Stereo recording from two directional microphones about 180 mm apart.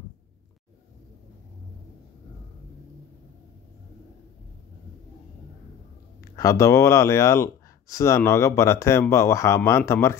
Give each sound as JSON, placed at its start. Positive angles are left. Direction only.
{"t": 6.3, "sound": "speech", "side_deg": 20}